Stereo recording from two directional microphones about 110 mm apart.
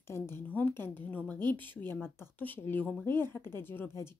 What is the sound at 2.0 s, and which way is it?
Speech, 20° left (ahead or behind).